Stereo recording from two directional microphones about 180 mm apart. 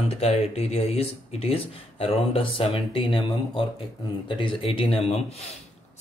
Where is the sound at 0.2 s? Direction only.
35° left (ahead or behind).